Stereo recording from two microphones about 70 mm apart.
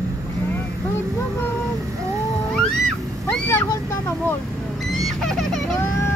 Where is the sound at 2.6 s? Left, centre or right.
Centre.